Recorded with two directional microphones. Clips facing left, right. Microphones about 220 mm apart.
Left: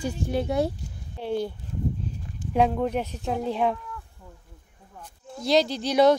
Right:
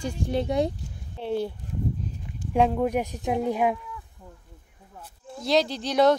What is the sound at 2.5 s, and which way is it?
A woman's voice, centre (ahead or behind).